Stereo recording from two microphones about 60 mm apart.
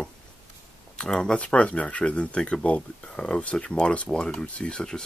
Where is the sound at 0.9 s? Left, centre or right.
Centre.